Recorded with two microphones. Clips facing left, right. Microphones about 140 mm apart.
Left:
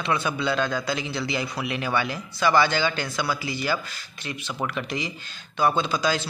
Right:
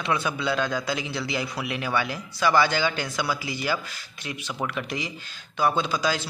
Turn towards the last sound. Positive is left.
turn(degrees=-5)  # may be behind; listen again after turning